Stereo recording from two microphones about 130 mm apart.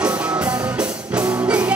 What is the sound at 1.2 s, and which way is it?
Music, 20° right (ahead or behind).